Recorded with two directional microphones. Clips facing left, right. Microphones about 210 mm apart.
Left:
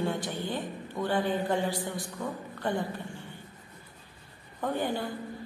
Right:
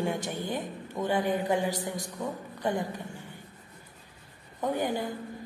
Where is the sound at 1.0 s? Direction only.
15° right (ahead or behind).